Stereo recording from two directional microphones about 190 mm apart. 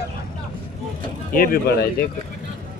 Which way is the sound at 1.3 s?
50° left (ahead or behind).